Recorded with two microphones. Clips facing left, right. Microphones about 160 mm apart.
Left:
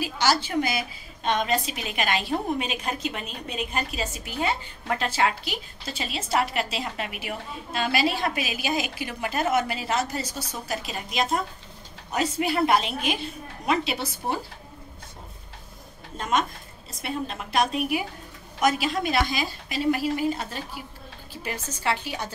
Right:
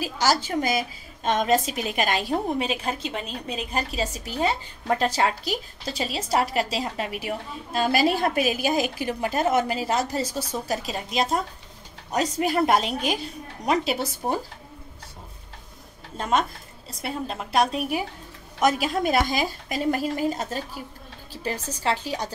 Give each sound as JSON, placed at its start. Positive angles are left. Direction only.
{"t": 0.0, "sound": "a woman's voice", "side_deg": -40}
{"t": 16.2, "sound": "a woman's voice", "side_deg": -30}
{"t": 18.6, "sound": "a woman's voice", "side_deg": -45}